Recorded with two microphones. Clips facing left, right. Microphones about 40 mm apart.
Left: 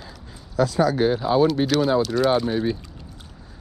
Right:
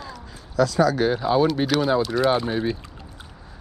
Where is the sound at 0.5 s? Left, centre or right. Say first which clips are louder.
Right 1 dB; centre.